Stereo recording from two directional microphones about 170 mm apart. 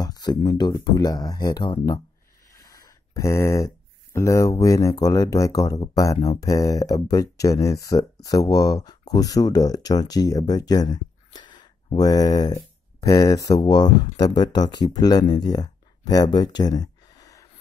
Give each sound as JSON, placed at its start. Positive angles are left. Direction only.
{"t": 0.0, "sound": "speech", "side_deg": 25}